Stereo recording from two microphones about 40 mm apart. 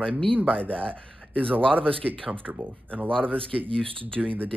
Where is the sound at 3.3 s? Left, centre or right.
Left.